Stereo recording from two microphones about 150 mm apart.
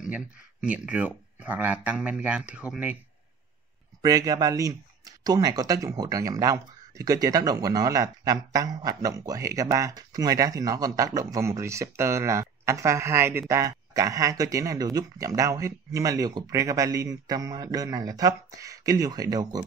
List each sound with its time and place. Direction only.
0.7 s speech: 10° right (ahead or behind)
4.0 s speech: 25° right (ahead or behind)